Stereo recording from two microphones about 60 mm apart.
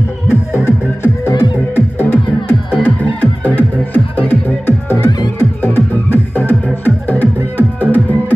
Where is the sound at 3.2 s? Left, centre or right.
Left.